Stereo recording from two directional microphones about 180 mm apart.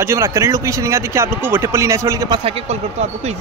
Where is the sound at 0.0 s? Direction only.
15° right (ahead or behind).